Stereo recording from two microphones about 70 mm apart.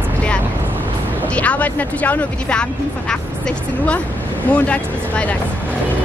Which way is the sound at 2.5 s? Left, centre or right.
Centre.